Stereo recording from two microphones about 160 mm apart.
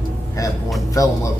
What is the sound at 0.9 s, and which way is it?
Speech, 20° left (ahead or behind).